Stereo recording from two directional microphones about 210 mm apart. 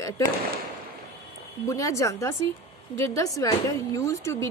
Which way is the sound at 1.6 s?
15° left (ahead or behind).